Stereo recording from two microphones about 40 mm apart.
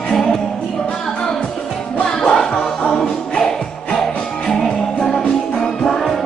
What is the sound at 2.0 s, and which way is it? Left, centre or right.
Music, centre.